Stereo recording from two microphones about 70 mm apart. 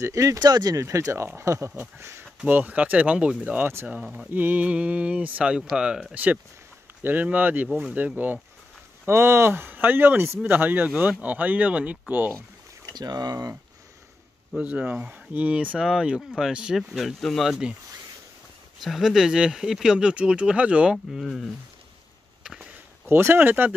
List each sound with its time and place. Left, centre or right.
0.0 s speech: right
0.4 s speech: right
0.7 s speech: right
2.4 s speech: right
4.3 s speech: right; by 6.0 s centre
7.0 s speech: right
9.0 s speech: right
12.9 s speech: right
14.6 s speech: right; by 17.5 s centre
17.5 s speech: centre
18.8 s speech: centre
22.4 s a sound: centre
23.0 s speech: right